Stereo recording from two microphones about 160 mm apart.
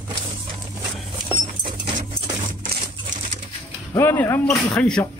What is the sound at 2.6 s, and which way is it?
Crumpling, 60° right (ahead or behind).